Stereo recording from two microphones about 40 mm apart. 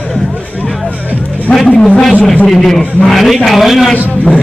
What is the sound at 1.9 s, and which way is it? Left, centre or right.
A man's voice, centre.